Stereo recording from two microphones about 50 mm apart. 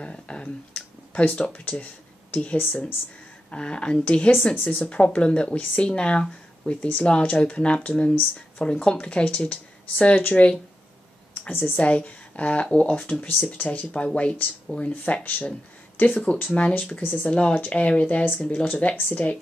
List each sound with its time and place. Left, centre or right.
0.0 s a sound: left
2.3 s speech: left
3.4 s speech: centre
11.5 s a woman's voice: left
11.8 s speech: left
17.0 s speech: left
17.3 s speech: left